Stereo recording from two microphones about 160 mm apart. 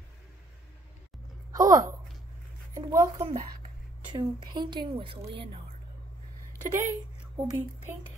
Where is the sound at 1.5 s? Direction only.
20° right (ahead or behind).